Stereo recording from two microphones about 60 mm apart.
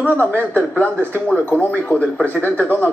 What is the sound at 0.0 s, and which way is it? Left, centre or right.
Speech, left.